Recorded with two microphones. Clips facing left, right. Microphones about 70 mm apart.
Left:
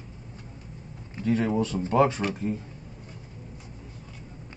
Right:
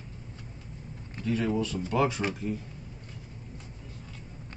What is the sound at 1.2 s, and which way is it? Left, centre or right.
Speech, left.